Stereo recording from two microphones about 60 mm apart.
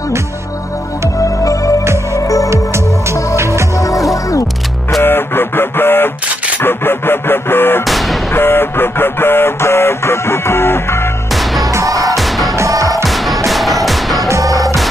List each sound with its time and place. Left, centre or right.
1.2 s music: left
2.5 s music: right
3.7 s music: left
5.0 s a sound: left
7.8 s a sound: centre
8.3 s music: left
11.7 s music: right
12.2 s music: centre
12.5 s music: right
13.0 s music: centre
14.2 s music: right